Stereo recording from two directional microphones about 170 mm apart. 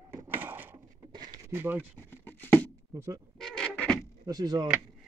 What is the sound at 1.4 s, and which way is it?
Speech, 10° right (ahead or behind).